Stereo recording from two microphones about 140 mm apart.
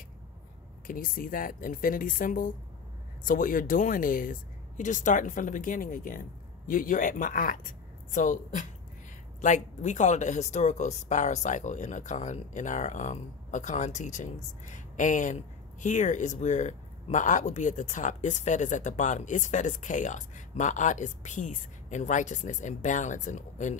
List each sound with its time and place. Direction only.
0.8 s speech: 90° left; by 23.8 s 55° left (ahead or behind)